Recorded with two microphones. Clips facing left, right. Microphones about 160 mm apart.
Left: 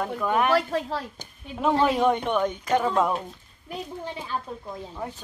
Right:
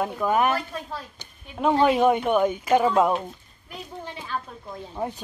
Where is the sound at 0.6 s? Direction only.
75° left (ahead or behind).